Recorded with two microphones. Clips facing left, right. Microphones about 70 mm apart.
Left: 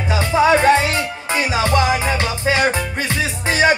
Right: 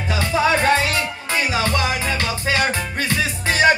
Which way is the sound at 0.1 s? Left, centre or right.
Centre.